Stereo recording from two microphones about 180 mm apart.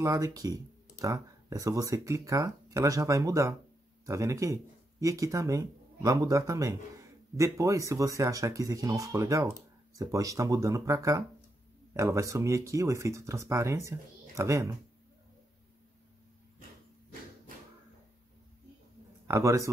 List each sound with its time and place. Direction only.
0.0 s speech: 20° right (ahead or behind)
19.2 s speech: 15° right (ahead or behind)